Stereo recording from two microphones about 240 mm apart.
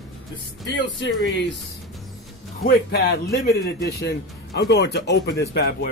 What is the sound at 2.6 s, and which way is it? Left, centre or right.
A man's voice, left.